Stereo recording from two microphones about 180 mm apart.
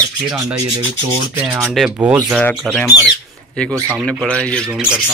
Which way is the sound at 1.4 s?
5° right (ahead or behind).